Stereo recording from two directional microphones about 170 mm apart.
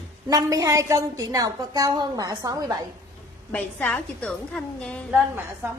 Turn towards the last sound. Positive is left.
turn(degrees=-15)  # may be behind; listen again after turning